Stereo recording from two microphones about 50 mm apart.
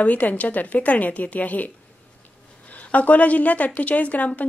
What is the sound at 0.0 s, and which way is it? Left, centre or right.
Speech, left.